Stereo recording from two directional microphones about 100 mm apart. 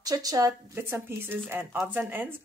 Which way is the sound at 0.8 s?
20° right (ahead or behind).